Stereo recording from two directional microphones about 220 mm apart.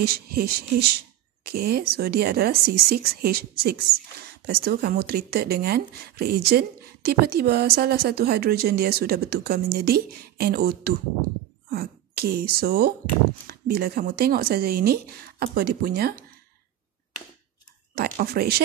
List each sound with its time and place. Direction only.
0.0 s speech: 45° right (ahead or behind)
17.9 s speech: 45° right (ahead or behind)